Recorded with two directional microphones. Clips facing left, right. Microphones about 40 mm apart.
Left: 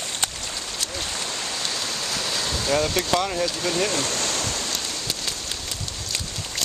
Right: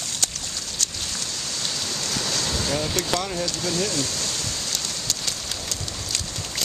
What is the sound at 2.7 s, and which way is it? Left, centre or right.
Speech, centre.